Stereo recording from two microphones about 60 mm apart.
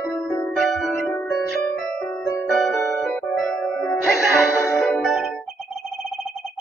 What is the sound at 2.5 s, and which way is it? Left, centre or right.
Music, centre.